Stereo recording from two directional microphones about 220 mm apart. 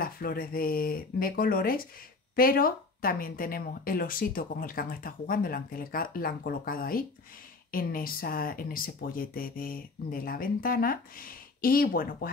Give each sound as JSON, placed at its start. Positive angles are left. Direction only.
{"t": 0.0, "sound": "speech", "side_deg": 40}